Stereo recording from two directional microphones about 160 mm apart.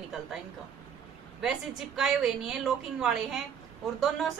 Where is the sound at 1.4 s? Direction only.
Centre (ahead or behind).